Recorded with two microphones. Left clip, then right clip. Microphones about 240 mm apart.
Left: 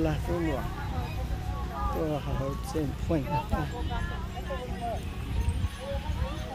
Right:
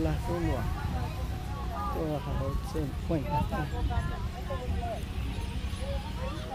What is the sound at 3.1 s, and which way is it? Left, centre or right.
Speech, centre.